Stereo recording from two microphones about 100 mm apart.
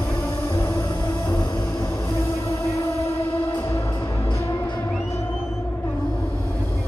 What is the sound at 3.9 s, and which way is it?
Music, 45° left (ahead or behind).